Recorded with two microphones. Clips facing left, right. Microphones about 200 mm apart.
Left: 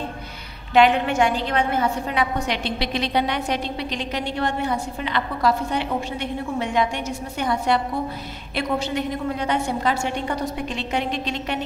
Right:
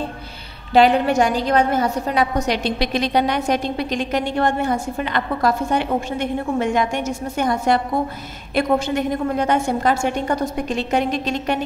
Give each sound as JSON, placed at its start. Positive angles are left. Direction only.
{"t": 0.7, "sound": "a woman's voice", "side_deg": -35}